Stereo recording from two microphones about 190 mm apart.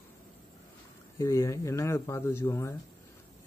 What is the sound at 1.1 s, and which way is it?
Speech, 15° left (ahead or behind).